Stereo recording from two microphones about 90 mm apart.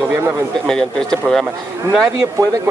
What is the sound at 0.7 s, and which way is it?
Speech, 5° left (ahead or behind).